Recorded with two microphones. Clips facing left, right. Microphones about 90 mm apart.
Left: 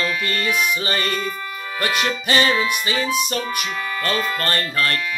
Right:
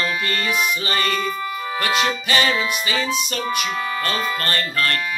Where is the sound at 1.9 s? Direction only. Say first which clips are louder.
Right 2 dB; 25° right (ahead or behind).